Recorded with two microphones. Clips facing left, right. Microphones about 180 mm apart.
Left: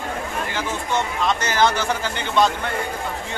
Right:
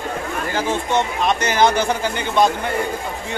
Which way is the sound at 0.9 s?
15° right (ahead or behind).